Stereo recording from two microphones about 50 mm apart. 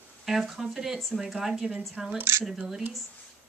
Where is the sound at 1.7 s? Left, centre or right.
Centre.